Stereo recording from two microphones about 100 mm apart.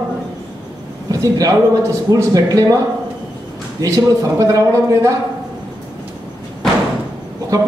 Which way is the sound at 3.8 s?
35° right (ahead or behind).